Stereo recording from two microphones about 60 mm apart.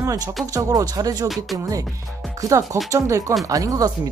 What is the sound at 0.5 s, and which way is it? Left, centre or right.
Speech, right.